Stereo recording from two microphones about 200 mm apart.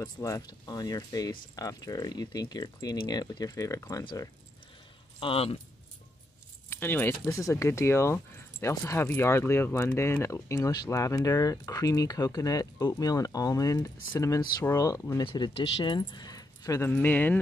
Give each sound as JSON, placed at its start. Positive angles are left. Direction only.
{"t": 0.0, "sound": "speech", "side_deg": 15}
{"t": 6.7, "sound": "speech", "side_deg": 10}